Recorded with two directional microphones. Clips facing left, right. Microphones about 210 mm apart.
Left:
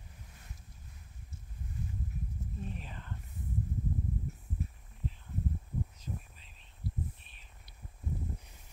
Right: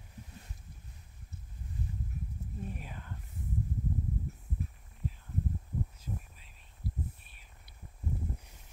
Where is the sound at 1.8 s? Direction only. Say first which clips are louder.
Right 1 dB; 35° right (ahead or behind).